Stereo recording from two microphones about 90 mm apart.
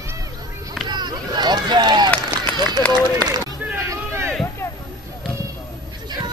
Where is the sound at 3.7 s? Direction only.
30° right (ahead or behind).